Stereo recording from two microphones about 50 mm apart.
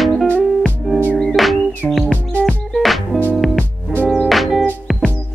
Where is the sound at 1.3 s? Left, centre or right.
Centre.